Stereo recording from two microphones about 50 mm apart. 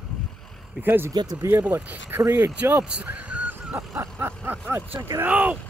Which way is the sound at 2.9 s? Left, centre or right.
Right.